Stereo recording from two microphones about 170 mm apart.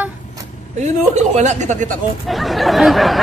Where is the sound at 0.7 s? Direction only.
40° right (ahead or behind).